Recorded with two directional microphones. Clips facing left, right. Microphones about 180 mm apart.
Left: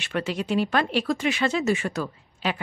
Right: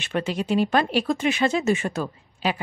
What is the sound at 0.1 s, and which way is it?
Speech, 20° right (ahead or behind).